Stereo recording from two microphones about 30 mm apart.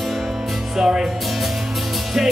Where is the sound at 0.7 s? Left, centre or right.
Right.